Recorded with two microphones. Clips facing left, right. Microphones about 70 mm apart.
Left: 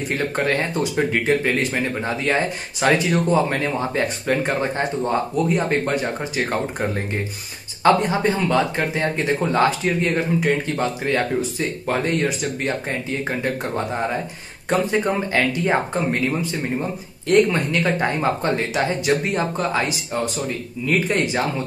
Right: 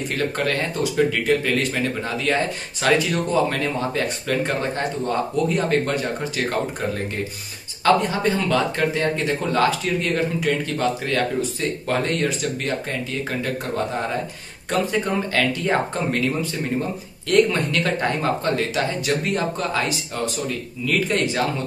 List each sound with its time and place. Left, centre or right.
0.5 s speech: left
7.8 s speech: left
14.7 s speech: left